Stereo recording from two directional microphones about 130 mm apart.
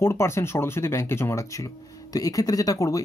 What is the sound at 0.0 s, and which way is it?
Speech, 20° left (ahead or behind).